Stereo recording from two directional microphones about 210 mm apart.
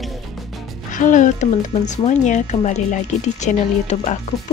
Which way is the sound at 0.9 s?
35° left (ahead or behind).